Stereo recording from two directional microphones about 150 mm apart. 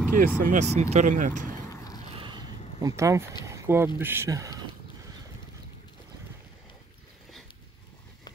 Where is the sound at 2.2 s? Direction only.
30° right (ahead or behind).